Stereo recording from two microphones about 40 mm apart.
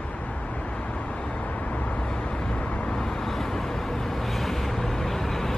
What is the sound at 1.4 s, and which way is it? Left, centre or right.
Vehicle, left.